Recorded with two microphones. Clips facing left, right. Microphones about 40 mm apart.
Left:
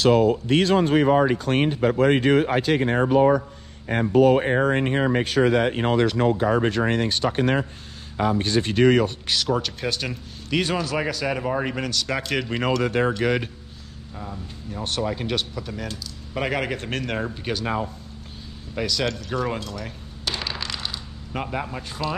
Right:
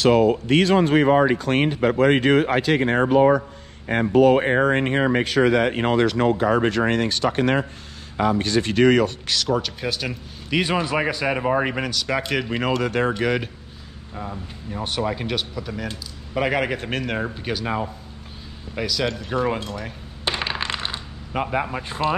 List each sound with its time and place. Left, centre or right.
0.0 s speech: right
9.5 s speech: centre
10.7 s speech: right
11.9 s speech: centre
14.1 s speech: centre
19.2 s speech: centre
19.6 s coin: right
21.3 s speech: centre